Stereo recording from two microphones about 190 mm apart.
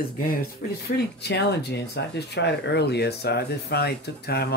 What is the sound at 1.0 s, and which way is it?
Speech, 60° left (ahead or behind).